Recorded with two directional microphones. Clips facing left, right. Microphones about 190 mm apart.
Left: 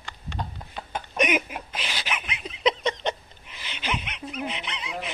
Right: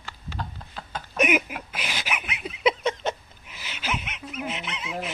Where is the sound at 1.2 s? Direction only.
5° right (ahead or behind).